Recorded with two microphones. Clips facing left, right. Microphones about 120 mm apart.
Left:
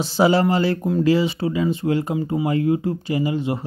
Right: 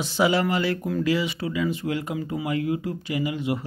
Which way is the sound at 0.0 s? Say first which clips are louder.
Left 5 dB; 35° left (ahead or behind).